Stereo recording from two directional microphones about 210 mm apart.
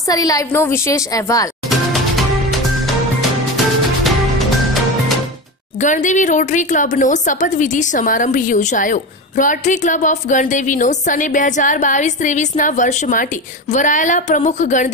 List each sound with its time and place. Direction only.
0.1 s a woman's voice: 15° left (ahead or behind)
1.7 s music: centre (ahead or behind)
5.8 s a woman's voice: 35° left (ahead or behind)